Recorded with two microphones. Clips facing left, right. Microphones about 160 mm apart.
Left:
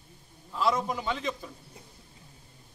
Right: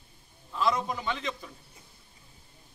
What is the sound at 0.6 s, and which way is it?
Speech, 10° left (ahead or behind).